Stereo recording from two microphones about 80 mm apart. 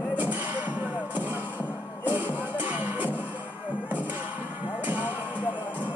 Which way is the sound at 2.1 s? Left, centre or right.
Right.